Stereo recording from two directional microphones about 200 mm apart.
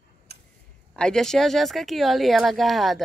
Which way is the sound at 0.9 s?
5° left (ahead or behind).